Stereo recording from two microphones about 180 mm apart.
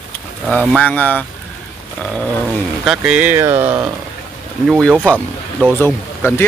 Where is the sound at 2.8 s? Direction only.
5° right (ahead or behind).